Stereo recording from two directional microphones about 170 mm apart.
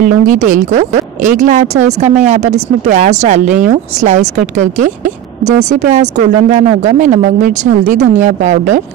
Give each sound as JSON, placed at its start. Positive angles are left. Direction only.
{"t": 0.0, "sound": "a woman's voice", "side_deg": -50}